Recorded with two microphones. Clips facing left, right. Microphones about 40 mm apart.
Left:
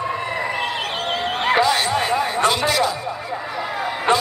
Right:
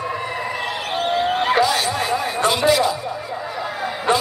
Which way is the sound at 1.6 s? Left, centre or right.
Left.